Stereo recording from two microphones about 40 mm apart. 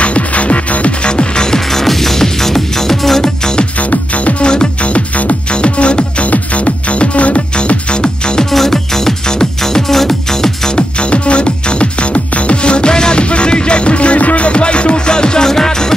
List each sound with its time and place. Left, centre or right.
0.0 s music: left
1.7 s music: centre
3.9 s music: left
8.5 s music: centre
10.8 s music: left; by 15.9 s centre